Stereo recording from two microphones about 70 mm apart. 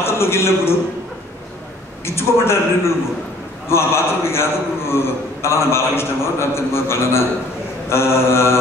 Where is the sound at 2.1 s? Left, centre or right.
Left.